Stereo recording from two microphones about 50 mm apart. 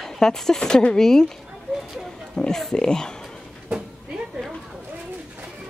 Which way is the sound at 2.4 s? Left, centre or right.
Centre.